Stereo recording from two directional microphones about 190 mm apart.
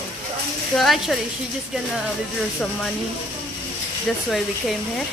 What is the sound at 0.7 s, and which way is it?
Hair dryer, centre (ahead or behind).